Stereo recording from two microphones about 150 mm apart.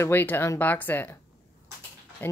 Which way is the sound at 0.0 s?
15° left (ahead or behind).